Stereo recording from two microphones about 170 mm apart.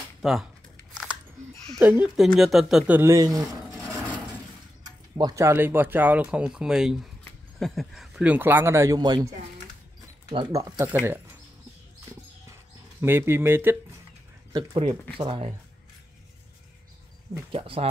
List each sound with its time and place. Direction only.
0.2 s speech: centre (ahead or behind)
1.8 s speech: 10° right (ahead or behind)
2.2 s speech: centre (ahead or behind)
3.0 s speech: 20° right (ahead or behind)
5.1 s speech: 20° right (ahead or behind)
10.3 s speech: 25° right (ahead or behind)
13.0 s speech: 15° right (ahead or behind)
14.5 s speech: 30° right (ahead or behind)
17.5 s speech: 35° right (ahead or behind)